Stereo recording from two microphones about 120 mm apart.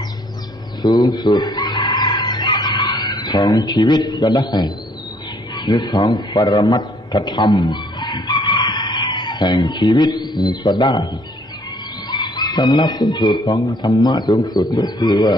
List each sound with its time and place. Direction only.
0.8 s chicken: 35° left (ahead or behind)
5.6 s a man's voice: 35° left (ahead or behind)
12.1 s a man's voice: 35° left (ahead or behind)